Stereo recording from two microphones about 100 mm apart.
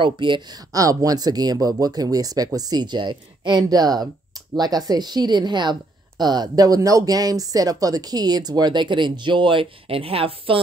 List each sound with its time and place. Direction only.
0.0 s a woman's voice: 55° right (ahead or behind)
0.7 s a woman's voice: 35° right (ahead or behind); by 10.6 s 65° right (ahead or behind)